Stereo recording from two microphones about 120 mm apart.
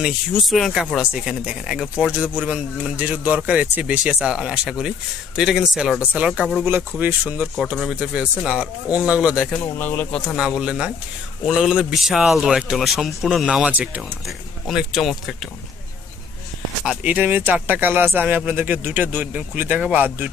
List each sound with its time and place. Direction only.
0.0 s a man's voice: centre (ahead or behind)
7.5 s speech: centre (ahead or behind)
9.8 s speech: 15° left (ahead or behind)
10.3 s a man's voice: 5° right (ahead or behind)
14.2 s a man's voice: centre (ahead or behind)
16.8 s speech: 10° right (ahead or behind)